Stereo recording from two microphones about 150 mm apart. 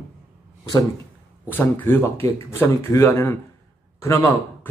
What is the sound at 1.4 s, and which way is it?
Speech, 10° left (ahead or behind).